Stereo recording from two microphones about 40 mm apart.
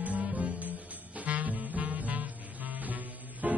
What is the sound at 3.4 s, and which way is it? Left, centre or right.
Music, right.